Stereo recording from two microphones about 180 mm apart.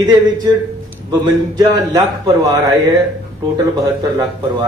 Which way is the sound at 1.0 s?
20° right (ahead or behind).